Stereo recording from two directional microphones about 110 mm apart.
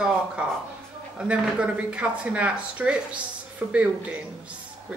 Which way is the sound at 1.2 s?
10° right (ahead or behind).